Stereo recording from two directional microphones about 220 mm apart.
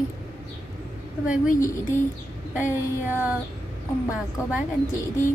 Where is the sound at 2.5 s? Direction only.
10° right (ahead or behind).